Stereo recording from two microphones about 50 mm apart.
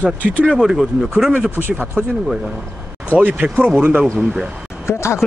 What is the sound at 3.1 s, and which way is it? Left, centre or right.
Speech, right.